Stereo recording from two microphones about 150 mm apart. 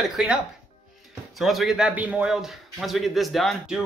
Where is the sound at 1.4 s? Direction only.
Centre (ahead or behind).